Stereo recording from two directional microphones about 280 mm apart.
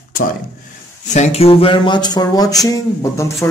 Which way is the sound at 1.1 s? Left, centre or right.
Left.